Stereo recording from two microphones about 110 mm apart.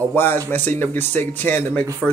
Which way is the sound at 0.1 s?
15° left (ahead or behind).